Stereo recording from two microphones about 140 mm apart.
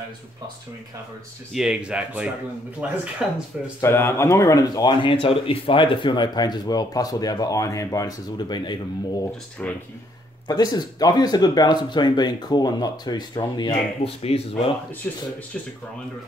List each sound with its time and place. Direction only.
1.5 s speech: 5° right (ahead or behind)
3.8 s speech: 15° left (ahead or behind)
9.6 s speech: 5° left (ahead or behind)
10.5 s speech: 30° left (ahead or behind)
14.0 s speech: 45° left (ahead or behind)
15.0 s speech: 10° left (ahead or behind)